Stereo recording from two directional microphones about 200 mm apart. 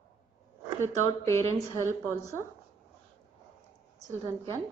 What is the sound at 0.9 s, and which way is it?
Speech, 15° left (ahead or behind).